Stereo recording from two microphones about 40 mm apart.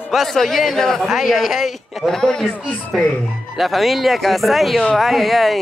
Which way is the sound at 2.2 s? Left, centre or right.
Centre.